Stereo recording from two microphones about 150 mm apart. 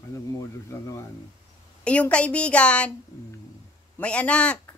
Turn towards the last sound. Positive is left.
turn(degrees=10)  # may be behind; listen again after turning